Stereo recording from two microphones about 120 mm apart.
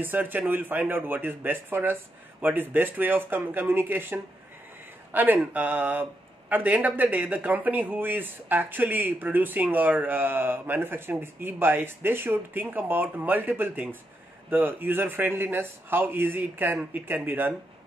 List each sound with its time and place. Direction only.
0.0 s speech: 15° right (ahead or behind)